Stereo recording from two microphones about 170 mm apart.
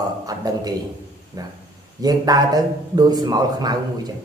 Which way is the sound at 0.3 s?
20° right (ahead or behind).